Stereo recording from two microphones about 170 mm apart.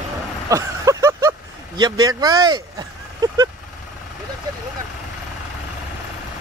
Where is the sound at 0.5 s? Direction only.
20° right (ahead or behind).